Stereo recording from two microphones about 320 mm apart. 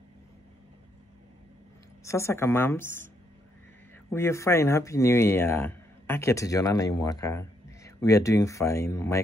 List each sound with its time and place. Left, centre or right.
2.0 s speech: centre
4.1 s speech: centre